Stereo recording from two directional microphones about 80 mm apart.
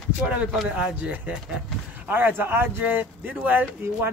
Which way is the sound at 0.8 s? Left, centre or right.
Centre.